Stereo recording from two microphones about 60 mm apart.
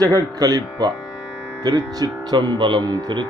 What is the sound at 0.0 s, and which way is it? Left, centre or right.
Speech, right.